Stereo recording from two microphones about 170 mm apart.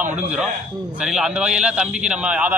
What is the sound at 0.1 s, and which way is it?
A man's voice, 5° right (ahead or behind).